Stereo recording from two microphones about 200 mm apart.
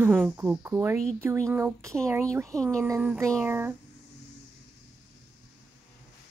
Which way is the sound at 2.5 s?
5° left (ahead or behind).